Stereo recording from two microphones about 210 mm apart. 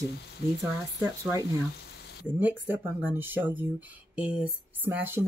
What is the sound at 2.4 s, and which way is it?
Speech, 10° right (ahead or behind).